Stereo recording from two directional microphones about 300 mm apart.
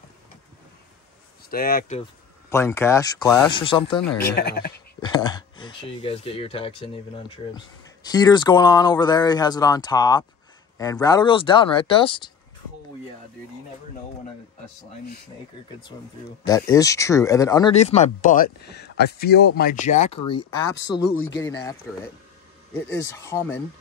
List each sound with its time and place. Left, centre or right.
1.5 s speech: left
2.5 s speech: centre
4.4 s speech: left
5.0 s speech: centre
16.4 s speech: centre
22.8 s speech: centre